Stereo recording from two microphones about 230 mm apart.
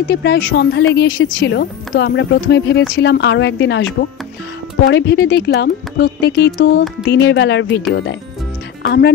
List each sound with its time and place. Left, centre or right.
0.1 s a woman's voice: left